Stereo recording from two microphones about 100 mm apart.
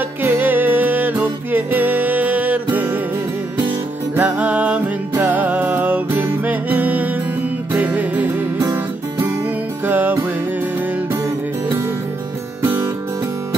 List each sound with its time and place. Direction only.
0.2 s music: 20° right (ahead or behind)
4.1 s music: 15° right (ahead or behind)
9.8 s music: 20° right (ahead or behind)